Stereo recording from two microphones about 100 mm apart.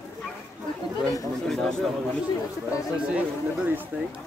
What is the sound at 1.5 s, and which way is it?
Speech, 5° left (ahead or behind).